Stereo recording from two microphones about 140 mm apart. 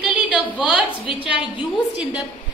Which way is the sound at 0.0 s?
5° right (ahead or behind).